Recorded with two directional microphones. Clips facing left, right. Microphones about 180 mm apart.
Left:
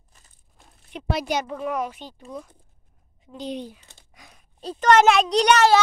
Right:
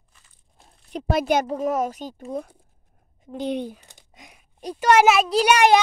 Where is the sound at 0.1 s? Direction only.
40° left (ahead or behind).